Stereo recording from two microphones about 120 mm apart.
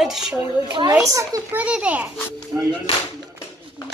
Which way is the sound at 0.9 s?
25° right (ahead or behind).